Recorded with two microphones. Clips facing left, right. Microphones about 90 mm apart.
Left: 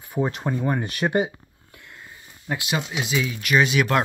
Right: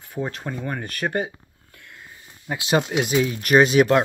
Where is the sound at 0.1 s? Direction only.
10° left (ahead or behind).